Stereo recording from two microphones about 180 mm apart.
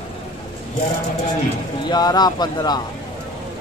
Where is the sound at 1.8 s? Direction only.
20° left (ahead or behind).